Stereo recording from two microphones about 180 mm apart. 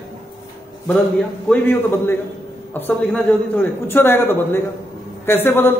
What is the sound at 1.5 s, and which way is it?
A man's voice, 10° left (ahead or behind).